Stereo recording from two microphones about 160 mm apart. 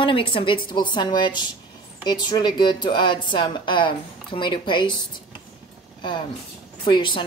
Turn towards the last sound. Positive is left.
turn(degrees=30)  # may be behind; listen again after turning